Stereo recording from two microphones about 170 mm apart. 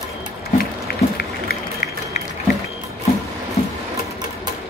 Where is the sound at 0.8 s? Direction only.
65° left (ahead or behind).